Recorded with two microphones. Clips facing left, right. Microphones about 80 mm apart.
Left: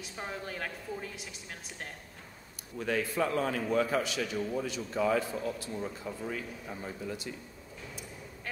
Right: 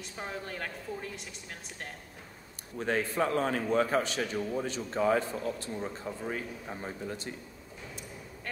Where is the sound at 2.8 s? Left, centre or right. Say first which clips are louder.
Right 1 dB; right.